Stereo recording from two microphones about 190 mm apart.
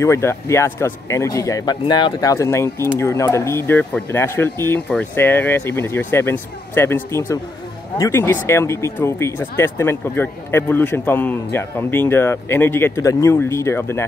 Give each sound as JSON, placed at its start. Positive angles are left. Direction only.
{"t": 0.0, "sound": "speech", "side_deg": 15}